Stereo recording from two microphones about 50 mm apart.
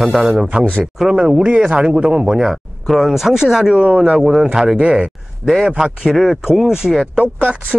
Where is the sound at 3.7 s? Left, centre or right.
Right.